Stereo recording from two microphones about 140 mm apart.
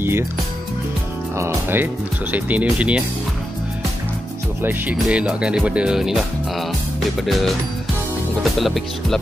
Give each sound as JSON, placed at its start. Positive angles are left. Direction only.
{"t": 1.4, "sound": "speech", "side_deg": -15}
{"t": 4.6, "sound": "speech", "side_deg": -15}